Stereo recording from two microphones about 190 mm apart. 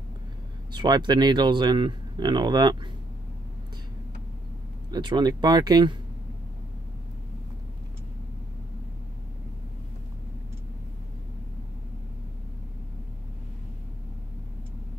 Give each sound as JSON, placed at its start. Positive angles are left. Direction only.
{"t": 0.7, "sound": "speech", "side_deg": -20}
{"t": 4.9, "sound": "speech", "side_deg": -25}